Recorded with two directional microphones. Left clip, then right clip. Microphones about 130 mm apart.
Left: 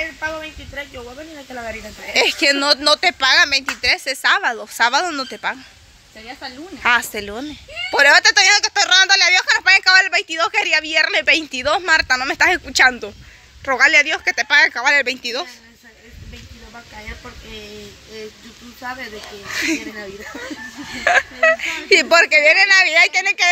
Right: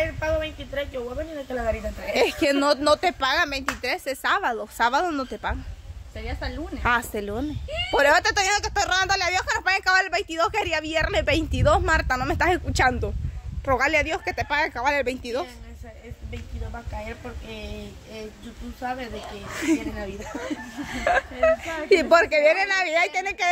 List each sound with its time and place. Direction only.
2.1 s speech: 5° right (ahead or behind)
6.8 s a woman's voice: 5° right (ahead or behind)
19.5 s speech: 20° right (ahead or behind)
21.0 s speech: 5° right (ahead or behind)